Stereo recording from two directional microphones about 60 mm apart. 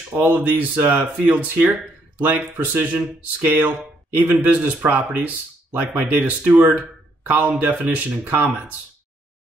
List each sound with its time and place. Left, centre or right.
0.1 s speech: right